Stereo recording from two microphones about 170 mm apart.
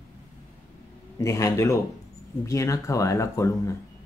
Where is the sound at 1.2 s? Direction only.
20° left (ahead or behind).